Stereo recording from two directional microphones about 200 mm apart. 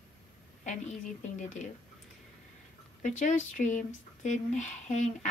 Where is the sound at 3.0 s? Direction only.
40° left (ahead or behind).